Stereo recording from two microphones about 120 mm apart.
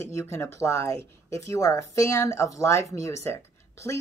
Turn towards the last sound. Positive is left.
turn(degrees=25)  # may be behind; listen again after turning